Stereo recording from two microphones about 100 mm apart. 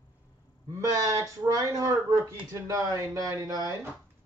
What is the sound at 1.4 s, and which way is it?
Speech, 35° right (ahead or behind).